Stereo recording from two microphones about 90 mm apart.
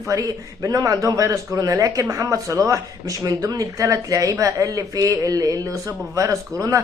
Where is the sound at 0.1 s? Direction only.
40° right (ahead or behind).